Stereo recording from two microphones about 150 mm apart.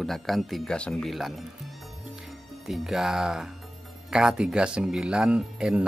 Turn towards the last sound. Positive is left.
turn(degrees=-5)  # may be behind; listen again after turning